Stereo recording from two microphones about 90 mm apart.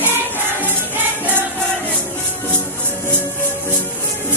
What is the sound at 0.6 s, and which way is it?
Music, 20° right (ahead or behind).